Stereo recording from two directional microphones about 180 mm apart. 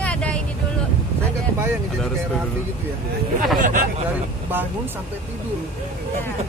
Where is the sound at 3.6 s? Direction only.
45° right (ahead or behind).